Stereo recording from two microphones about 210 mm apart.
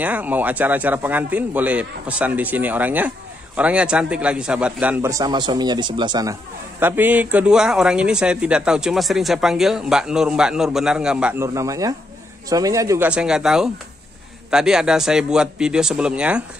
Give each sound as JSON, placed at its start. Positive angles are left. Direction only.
{"t": 0.0, "sound": "speech", "side_deg": -5}
{"t": 6.8, "sound": "speech", "side_deg": -10}